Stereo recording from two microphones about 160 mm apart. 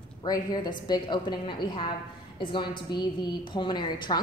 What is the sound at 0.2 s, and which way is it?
A woman's voice, 25° left (ahead or behind).